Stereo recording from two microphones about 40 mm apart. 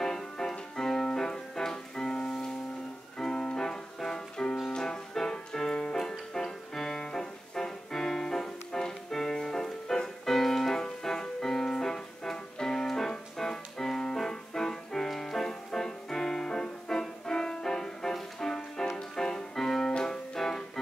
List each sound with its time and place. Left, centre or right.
0.0 s music: centre